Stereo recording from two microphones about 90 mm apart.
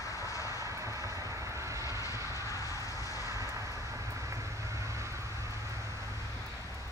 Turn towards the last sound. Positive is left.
turn(degrees=-35)  # may be behind; listen again after turning